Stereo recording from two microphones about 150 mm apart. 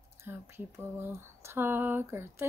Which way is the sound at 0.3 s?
15° right (ahead or behind).